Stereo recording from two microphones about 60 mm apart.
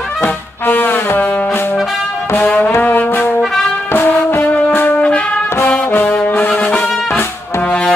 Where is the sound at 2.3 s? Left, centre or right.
Left.